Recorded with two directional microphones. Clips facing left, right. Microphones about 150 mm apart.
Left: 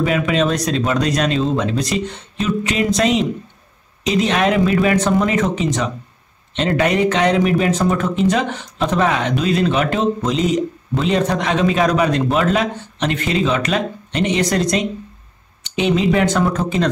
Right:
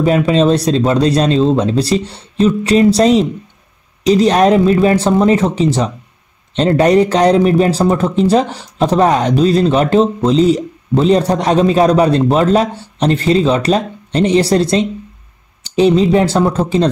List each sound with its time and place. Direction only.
0.0 s speech: 35° right (ahead or behind)